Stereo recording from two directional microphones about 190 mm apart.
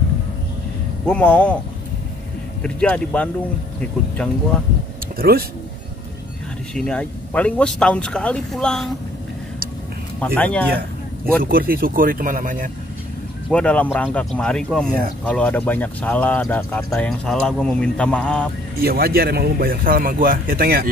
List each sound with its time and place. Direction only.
1.0 s speech: 5° left (ahead or behind)
2.6 s speech: 5° left (ahead or behind)
5.1 s a man's voice: 50° right (ahead or behind)
6.7 s speech: 5° left (ahead or behind)
10.2 s speech: 5° left (ahead or behind)
11.4 s a man's voice: 50° right (ahead or behind)
13.5 s speech: 5° left (ahead or behind)
18.8 s a man's voice: 55° right (ahead or behind)